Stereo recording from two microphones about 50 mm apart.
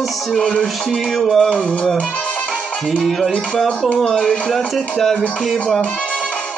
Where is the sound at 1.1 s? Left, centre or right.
Centre.